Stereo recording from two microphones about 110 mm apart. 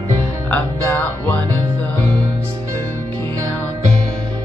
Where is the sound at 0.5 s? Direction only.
15° left (ahead or behind).